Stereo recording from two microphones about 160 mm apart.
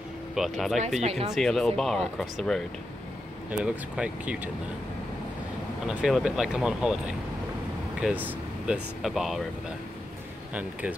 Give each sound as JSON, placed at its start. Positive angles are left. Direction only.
{"t": 0.3, "sound": "speech", "side_deg": 0}
{"t": 1.0, "sound": "speech", "side_deg": -40}
{"t": 1.3, "sound": "speech", "side_deg": 0}
{"t": 5.9, "sound": "speech", "side_deg": -5}
{"t": 10.5, "sound": "speech", "side_deg": -10}